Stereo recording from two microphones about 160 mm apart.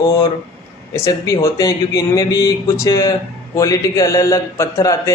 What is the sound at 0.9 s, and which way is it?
Speech, 20° left (ahead or behind).